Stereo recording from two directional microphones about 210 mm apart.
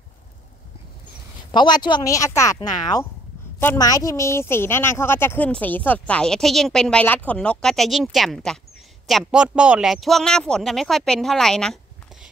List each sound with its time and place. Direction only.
1.5 s a woman's voice: 20° left (ahead or behind); by 12.3 s centre (ahead or behind)